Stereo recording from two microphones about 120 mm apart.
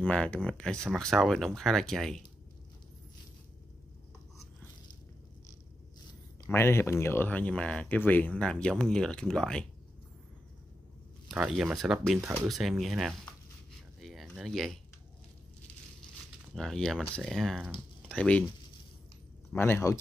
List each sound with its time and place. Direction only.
0.0 s speech: 10° left (ahead or behind)
6.5 s speech: 20° left (ahead or behind)
11.2 s speech: 5° right (ahead or behind)
13.9 s a sound: centre (ahead or behind)
16.5 s speech: 5° left (ahead or behind)
19.5 s speech: 20° left (ahead or behind)